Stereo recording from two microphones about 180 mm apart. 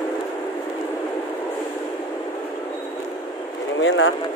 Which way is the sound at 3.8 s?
90° left.